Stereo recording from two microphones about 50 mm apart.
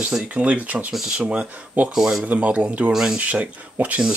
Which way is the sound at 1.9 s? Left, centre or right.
Centre.